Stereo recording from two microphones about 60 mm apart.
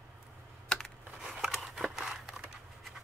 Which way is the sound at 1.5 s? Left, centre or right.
Centre.